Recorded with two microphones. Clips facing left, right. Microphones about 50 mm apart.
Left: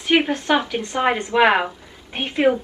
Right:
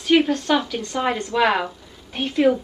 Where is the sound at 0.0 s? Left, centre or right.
Left.